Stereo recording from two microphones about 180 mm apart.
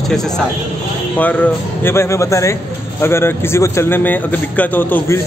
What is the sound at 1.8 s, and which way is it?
A man's voice, 15° left (ahead or behind).